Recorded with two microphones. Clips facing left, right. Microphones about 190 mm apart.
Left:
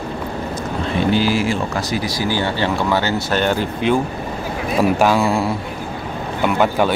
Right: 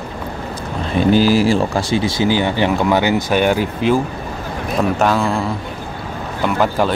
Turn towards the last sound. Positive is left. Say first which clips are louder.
# even
turn(degrees=0)  # may be behind; listen again after turning